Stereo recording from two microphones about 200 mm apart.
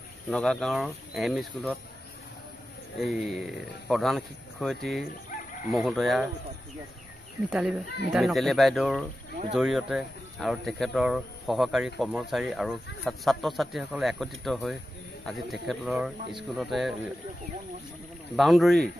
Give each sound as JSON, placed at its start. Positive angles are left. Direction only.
{"t": 0.3, "sound": "speech", "side_deg": 5}
{"t": 3.0, "sound": "speech", "side_deg": 0}
{"t": 5.3, "sound": "chicken", "side_deg": 40}
{"t": 5.7, "sound": "speech", "side_deg": 0}
{"t": 7.4, "sound": "speech", "side_deg": -5}
{"t": 18.3, "sound": "speech", "side_deg": 0}